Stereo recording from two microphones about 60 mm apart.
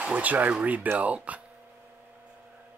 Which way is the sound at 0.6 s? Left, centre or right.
Right.